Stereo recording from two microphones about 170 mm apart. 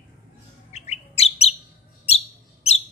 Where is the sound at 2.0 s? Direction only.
40° left (ahead or behind).